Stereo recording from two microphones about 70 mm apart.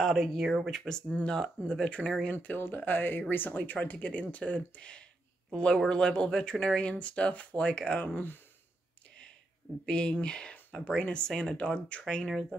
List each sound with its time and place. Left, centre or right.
0.0 s speech: centre
2.4 s speech: left
9.8 s speech: centre